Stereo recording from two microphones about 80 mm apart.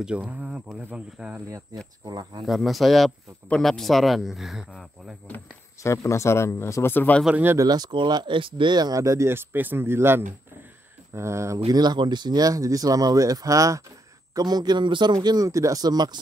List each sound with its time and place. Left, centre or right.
0.0 s speech: centre
2.0 s speech: right
2.4 s speech: centre
5.8 s speech: left
7.6 s speech: right
9.0 s speech: right
9.3 s speech: right
11.6 s speech: right
14.3 s speech: right
15.1 s speech: right